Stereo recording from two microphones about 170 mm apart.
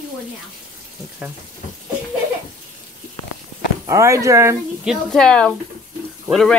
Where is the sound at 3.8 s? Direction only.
15° right (ahead or behind).